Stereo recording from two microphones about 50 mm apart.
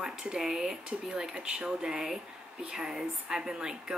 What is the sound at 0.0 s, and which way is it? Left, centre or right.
A woman's voice, centre.